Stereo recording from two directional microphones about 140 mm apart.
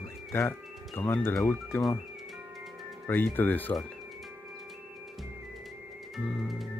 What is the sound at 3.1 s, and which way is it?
Speech, 15° left (ahead or behind).